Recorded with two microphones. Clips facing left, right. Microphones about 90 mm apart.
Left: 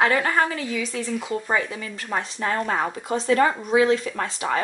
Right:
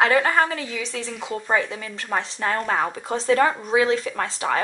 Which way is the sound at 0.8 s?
5° left (ahead or behind).